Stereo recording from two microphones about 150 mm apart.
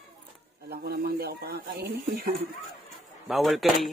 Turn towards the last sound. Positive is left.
turn(degrees=0)  # may be behind; listen again after turning